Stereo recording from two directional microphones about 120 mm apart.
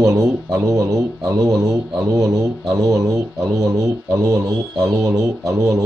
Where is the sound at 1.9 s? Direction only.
30° right (ahead or behind).